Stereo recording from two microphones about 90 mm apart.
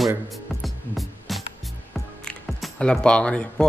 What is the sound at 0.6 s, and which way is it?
Music, centre (ahead or behind).